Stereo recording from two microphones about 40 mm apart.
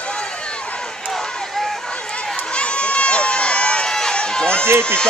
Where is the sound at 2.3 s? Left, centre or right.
Left.